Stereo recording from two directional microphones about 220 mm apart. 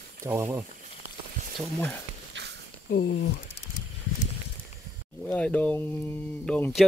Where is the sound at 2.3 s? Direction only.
55° right (ahead or behind).